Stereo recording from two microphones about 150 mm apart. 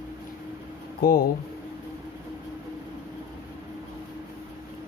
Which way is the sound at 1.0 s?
75° left (ahead or behind).